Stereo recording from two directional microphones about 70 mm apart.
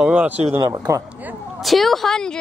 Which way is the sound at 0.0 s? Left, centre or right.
Centre.